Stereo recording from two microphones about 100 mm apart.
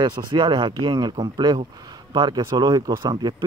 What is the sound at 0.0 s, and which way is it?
Speech, 50° right (ahead or behind).